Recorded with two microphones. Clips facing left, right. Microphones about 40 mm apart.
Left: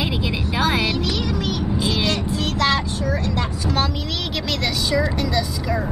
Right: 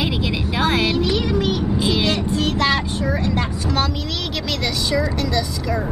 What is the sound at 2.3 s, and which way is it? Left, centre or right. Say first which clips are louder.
Child singing: right 1 dB; right.